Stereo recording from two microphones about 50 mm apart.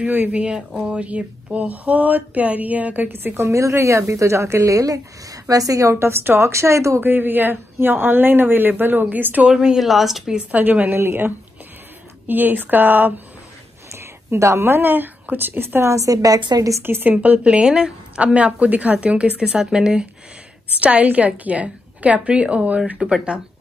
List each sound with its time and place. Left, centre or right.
0.0 s a woman's voice: right
0.3 s a woman's voice: right
3.1 s speech: right
3.4 s a woman's voice: right
6.5 s a woman's voice: right
7.0 s a woman's voice: right
9.4 s speech: centre
10.5 s a woman's voice: right
11.0 s speech: right
12.3 s a woman's voice: right
13.9 s a sound: right
14.6 s speech: right
17.1 s a woman's voice: right
20.8 s a woman's voice: right